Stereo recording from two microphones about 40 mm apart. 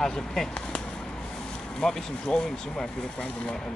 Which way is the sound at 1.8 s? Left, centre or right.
Centre.